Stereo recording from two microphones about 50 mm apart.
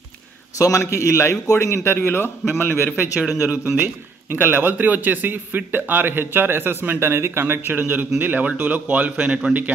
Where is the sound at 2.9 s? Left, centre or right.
Right.